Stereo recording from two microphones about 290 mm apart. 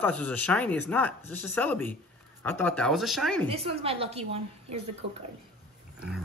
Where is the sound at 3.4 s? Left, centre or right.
Centre.